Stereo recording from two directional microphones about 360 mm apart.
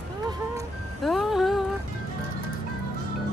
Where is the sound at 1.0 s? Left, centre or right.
Centre.